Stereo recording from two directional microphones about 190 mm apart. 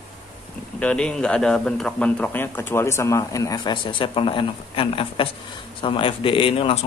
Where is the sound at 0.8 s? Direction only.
5° left (ahead or behind).